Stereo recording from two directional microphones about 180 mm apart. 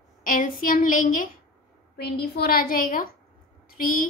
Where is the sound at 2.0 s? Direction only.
60° left (ahead or behind).